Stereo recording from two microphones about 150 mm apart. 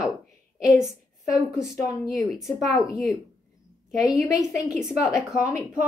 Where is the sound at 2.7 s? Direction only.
25° left (ahead or behind).